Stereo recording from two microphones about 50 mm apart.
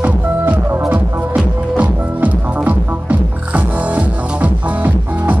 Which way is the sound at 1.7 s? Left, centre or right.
Right.